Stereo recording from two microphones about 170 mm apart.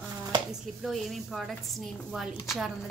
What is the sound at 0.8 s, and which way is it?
A woman's voice, centre (ahead or behind).